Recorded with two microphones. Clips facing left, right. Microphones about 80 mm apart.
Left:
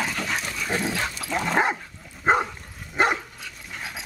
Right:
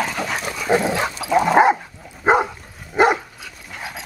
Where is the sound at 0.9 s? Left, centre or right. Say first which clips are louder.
Right 6 dB; right.